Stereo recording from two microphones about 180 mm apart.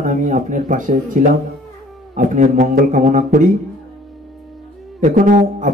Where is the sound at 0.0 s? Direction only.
45° right (ahead or behind).